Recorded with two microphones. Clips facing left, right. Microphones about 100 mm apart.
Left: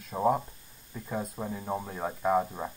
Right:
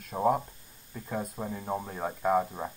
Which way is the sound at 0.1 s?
Centre (ahead or behind).